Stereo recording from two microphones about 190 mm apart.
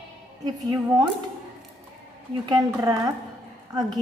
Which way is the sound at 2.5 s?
20° right (ahead or behind).